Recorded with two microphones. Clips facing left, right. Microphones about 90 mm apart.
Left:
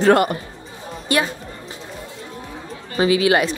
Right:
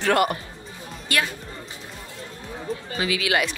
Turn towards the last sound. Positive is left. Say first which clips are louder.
# left 7 dB
turn(degrees=30)  # may be behind; listen again after turning